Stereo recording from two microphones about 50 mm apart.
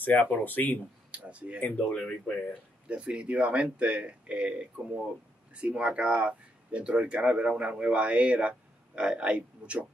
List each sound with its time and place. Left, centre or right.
0.0 s speech: left
1.1 s speech: right
1.6 s speech: left
2.9 s speech: right